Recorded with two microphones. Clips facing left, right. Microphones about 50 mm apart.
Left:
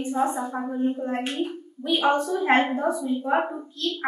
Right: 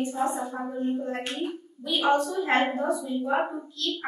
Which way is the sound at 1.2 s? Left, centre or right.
Centre.